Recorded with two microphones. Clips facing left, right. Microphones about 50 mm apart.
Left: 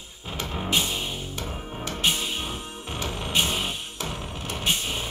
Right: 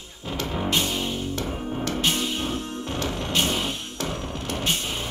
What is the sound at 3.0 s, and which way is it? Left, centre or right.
Music, centre.